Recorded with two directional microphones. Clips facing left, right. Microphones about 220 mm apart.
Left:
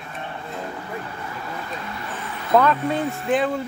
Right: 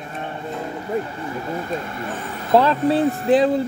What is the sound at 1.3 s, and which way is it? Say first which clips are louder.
Speech: right 10 dB; 30° right (ahead or behind).